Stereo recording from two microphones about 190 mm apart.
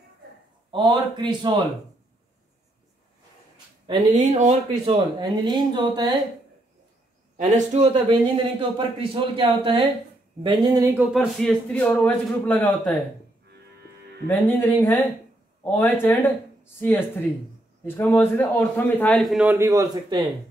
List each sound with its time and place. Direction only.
0.7 s a man's voice: 25° right (ahead or behind)
3.8 s speech: 25° right (ahead or behind)
4.2 s speech: 40° right (ahead or behind)
5.2 s a man's voice: 25° right (ahead or behind)
7.3 s a man's voice: 40° right (ahead or behind)
11.0 s a man's voice: centre (ahead or behind)
14.2 s a man's voice: 10° left (ahead or behind)
17.8 s a man's voice: 10° left (ahead or behind); by 20.2 s 20° right (ahead or behind)